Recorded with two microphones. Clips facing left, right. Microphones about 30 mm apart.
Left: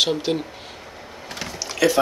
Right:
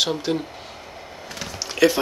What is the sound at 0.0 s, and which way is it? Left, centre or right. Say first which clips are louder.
Speech: left 2 dB; centre.